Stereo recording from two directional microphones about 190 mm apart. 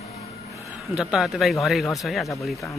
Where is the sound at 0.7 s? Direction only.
5° right (ahead or behind).